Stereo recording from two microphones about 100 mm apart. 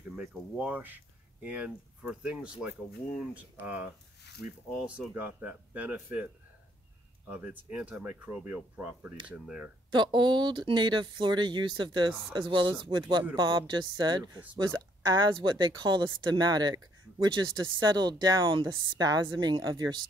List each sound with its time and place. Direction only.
0.1 s speech: 10° right (ahead or behind)
5.1 s speech: 15° right (ahead or behind)
7.2 s speech: 15° right (ahead or behind)
9.9 s speech: 50° right (ahead or behind)